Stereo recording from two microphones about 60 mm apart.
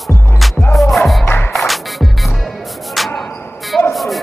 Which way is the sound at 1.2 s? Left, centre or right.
Left.